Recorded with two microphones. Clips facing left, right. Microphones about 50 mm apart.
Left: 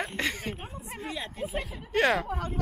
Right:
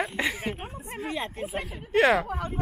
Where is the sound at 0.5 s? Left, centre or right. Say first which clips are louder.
Right 3 dB; right.